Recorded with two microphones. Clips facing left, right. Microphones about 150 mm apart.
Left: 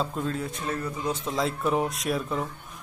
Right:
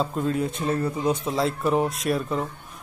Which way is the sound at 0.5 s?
30° right (ahead or behind).